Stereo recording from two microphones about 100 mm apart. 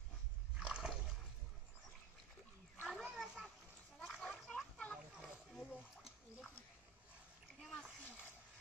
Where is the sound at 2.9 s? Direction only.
Centre (ahead or behind).